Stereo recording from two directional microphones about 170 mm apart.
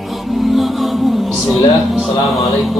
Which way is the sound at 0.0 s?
Centre (ahead or behind).